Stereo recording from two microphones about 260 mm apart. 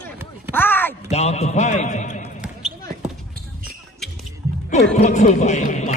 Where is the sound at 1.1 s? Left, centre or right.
Left.